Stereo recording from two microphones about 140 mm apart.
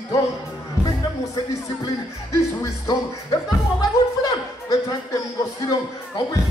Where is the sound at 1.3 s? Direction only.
25° left (ahead or behind).